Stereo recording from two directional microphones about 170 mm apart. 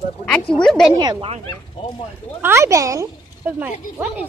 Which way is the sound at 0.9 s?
25° right (ahead or behind).